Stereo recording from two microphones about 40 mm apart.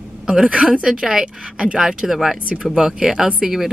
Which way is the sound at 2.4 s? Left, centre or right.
Right.